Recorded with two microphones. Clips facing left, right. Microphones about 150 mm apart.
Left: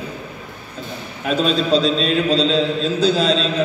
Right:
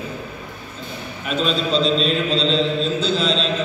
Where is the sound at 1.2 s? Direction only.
40° left (ahead or behind).